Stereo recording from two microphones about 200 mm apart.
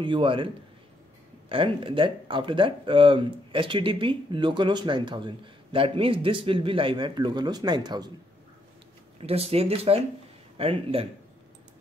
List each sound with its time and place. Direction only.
0.0 s speech: 25° right (ahead or behind)
1.5 s speech: 25° right (ahead or behind)
9.2 s speech: 30° right (ahead or behind)